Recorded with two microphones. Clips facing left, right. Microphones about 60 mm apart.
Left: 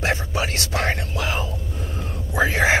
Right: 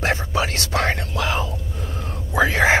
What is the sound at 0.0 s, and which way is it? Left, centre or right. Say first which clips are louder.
Whispering: right 2 dB; right.